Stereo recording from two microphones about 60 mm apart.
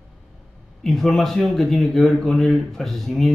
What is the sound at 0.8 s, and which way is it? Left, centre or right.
Speech, centre.